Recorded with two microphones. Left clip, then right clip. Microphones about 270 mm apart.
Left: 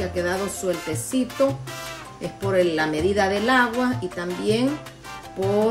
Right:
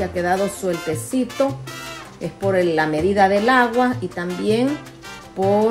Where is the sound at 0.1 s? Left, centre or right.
Centre.